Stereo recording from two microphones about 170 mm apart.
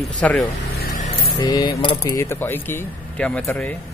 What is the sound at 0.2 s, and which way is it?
Speech, 5° left (ahead or behind).